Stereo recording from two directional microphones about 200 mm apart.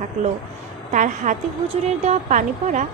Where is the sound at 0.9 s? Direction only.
40° right (ahead or behind).